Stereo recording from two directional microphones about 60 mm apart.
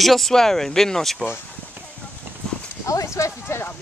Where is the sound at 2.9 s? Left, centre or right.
Left.